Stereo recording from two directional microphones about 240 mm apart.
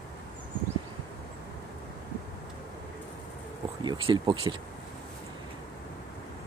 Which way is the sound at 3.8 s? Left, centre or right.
Centre.